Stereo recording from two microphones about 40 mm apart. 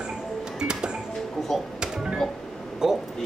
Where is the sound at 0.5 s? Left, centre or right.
Right.